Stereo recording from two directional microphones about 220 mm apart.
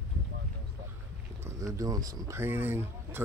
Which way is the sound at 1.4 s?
15° right (ahead or behind).